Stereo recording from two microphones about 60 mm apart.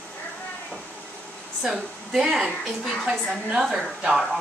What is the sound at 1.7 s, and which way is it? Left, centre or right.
Speech, centre.